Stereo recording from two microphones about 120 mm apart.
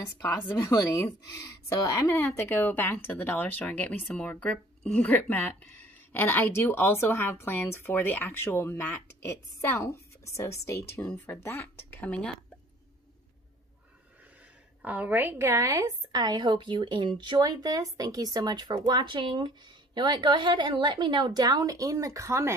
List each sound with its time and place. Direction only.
0.6 s speech: 30° left (ahead or behind); by 12.4 s 10° left (ahead or behind)
14.8 s a woman's voice: 10° right (ahead or behind)